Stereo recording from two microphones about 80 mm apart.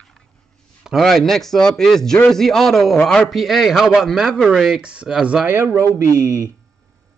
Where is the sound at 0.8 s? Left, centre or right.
Centre.